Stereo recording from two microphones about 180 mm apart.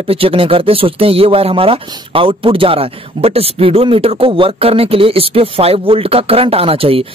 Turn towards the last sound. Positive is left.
turn(degrees=-30)  # may be behind; listen again after turning